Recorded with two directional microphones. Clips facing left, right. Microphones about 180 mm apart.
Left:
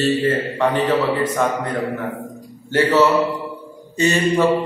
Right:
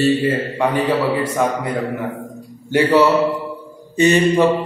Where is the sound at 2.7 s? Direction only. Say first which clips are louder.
Right 2 dB; 15° right (ahead or behind).